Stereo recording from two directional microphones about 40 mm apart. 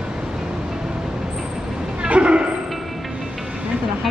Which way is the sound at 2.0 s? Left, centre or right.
Right.